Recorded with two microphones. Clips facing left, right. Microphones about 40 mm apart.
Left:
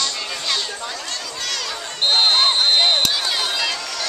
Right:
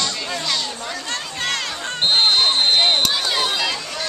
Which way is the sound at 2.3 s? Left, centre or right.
Centre.